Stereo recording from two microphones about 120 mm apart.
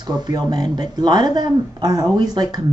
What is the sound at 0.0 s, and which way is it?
Speech, 35° right (ahead or behind).